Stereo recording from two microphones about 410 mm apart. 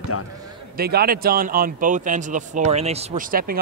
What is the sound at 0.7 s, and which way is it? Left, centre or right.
A man's voice, right.